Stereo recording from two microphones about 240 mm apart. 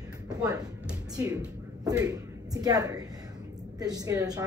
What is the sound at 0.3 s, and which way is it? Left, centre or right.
A woman's voice, centre.